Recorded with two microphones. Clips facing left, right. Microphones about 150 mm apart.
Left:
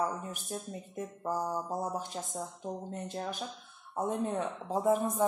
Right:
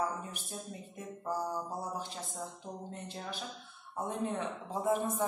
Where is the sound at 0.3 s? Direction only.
45° left (ahead or behind).